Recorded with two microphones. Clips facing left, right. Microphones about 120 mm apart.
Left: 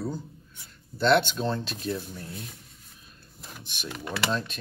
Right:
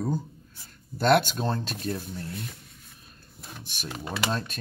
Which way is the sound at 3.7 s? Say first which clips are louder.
Even; 40° right (ahead or behind).